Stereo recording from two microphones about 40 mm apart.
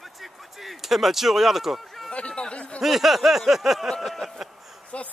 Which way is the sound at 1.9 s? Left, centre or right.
Centre.